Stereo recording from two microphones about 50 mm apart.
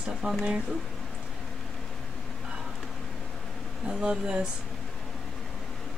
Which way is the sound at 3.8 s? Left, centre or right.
Centre.